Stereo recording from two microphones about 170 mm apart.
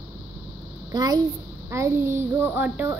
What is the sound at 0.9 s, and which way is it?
A child's voice, 25° right (ahead or behind).